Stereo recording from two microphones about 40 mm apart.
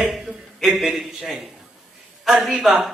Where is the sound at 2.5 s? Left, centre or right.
Centre.